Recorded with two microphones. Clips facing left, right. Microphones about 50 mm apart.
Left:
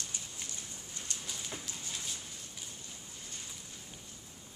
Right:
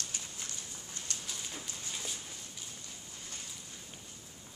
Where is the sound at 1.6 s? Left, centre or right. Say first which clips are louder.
Right 1 dB; centre.